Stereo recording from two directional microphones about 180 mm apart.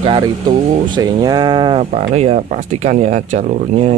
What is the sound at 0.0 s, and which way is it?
Speech, 25° right (ahead or behind).